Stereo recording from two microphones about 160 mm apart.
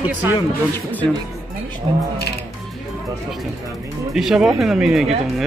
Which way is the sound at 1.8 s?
40° right (ahead or behind).